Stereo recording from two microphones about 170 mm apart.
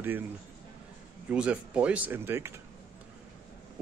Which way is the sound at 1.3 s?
5° right (ahead or behind).